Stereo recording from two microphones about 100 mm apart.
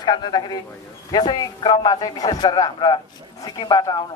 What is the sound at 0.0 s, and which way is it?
A man's voice, 50° left (ahead or behind).